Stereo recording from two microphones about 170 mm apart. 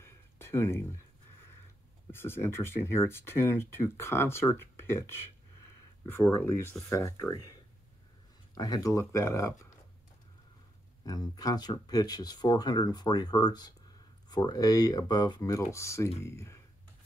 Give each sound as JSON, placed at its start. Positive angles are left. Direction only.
{"t": 0.0, "sound": "a sound", "side_deg": 15}
{"t": 2.0, "sound": "speech", "side_deg": 15}
{"t": 6.2, "sound": "speech", "side_deg": 15}
{"t": 8.5, "sound": "speech", "side_deg": 20}
{"t": 11.1, "sound": "speech", "side_deg": 20}